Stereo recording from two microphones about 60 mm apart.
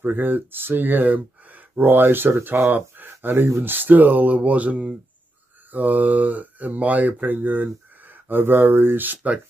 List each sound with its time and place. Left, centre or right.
0.0 s speech: right